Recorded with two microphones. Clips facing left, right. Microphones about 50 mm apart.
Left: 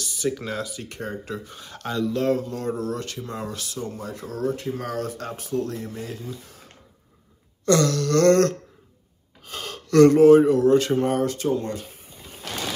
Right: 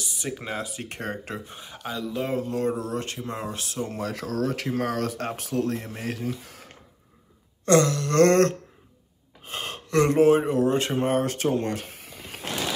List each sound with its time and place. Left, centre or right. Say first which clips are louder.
0.0 s speech: left 6 dB; centre; by 1.4 s right
1.4 s speech: left 2 dB; right
2.3 s speech: right 1 dB; right
4.3 s speech: left 2 dB; right
4.6 s speech: right 2 dB; right
7.6 s speech: even; right
8.2 s speech: even; right
12.0 s power windows: right 4 dB; right